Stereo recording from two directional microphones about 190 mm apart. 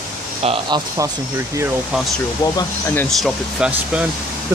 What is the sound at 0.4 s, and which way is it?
Speech, 25° right (ahead or behind).